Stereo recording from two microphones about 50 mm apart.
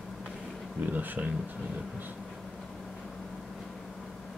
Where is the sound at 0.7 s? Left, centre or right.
Right.